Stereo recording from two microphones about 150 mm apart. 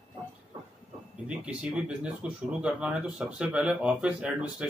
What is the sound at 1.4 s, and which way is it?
Speech, 5° right (ahead or behind).